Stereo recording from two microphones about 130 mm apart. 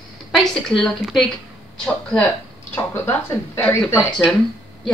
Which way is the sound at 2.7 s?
20° left (ahead or behind).